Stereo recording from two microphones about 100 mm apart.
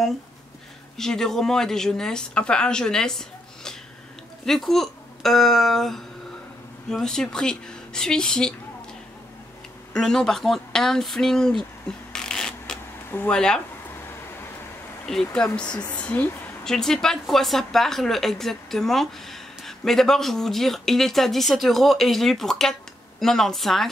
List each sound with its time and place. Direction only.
0.9 s a woman's voice: 5° left (ahead or behind)
9.9 s a woman's voice: 5° left (ahead or behind)
12.1 s a sound: 5° left (ahead or behind)
13.3 s a woman's voice: 5° left (ahead or behind)
15.3 s a woman's voice: 10° left (ahead or behind)